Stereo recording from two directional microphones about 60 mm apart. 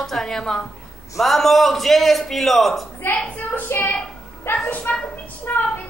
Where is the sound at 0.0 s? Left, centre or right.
Centre.